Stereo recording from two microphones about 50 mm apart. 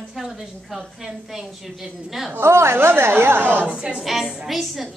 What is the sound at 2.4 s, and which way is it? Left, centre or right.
Speech, right.